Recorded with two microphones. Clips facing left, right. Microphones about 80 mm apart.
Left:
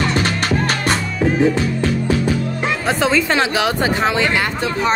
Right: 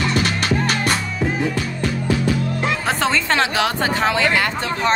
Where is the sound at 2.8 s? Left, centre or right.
Centre.